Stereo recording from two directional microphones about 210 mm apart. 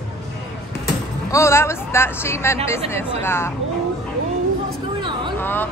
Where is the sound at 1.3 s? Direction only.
15° left (ahead or behind).